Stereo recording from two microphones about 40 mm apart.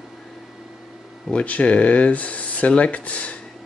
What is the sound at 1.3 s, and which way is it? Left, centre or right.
Speech, left.